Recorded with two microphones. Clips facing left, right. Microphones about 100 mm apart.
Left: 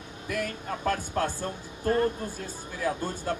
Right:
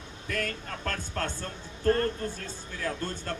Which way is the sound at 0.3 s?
10° left (ahead or behind).